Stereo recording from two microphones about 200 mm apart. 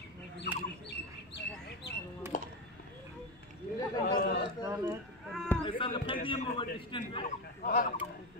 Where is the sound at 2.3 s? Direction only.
40° left (ahead or behind).